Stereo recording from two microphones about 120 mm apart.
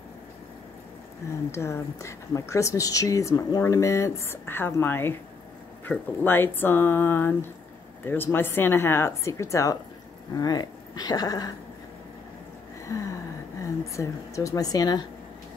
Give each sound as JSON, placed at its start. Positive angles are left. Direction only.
{"t": 1.5, "sound": "speech", "side_deg": 25}
{"t": 13.6, "sound": "speech", "side_deg": 25}